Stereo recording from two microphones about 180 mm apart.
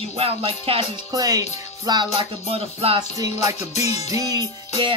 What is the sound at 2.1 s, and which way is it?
Music, 30° right (ahead or behind).